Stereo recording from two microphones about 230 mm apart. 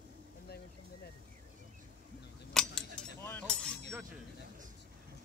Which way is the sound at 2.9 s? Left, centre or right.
Centre.